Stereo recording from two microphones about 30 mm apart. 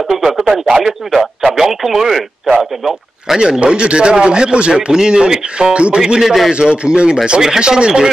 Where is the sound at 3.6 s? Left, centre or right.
Right.